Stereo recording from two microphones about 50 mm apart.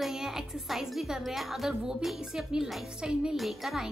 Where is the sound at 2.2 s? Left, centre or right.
Centre.